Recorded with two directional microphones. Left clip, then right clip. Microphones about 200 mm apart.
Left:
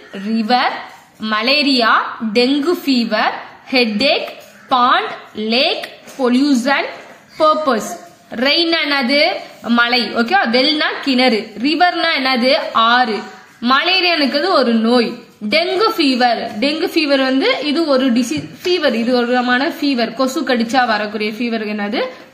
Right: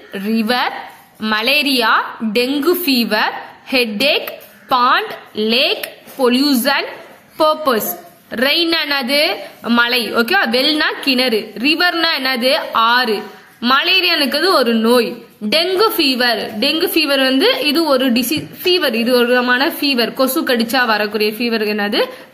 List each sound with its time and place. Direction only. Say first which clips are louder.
0.1 s a woman's voice: left 1 dB; 25° right (ahead or behind)